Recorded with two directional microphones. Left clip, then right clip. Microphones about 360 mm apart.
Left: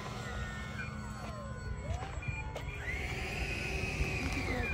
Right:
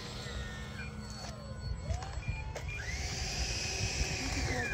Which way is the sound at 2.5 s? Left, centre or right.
Right.